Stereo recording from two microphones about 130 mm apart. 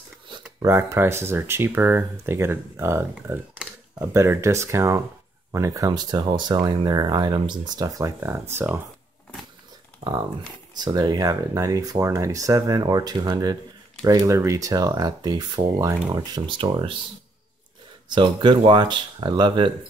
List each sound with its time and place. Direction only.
0.6 s speech: 25° right (ahead or behind)
10.0 s speech: 45° right (ahead or behind)
10.7 s speech: 30° right (ahead or behind)
18.1 s speech: 35° right (ahead or behind)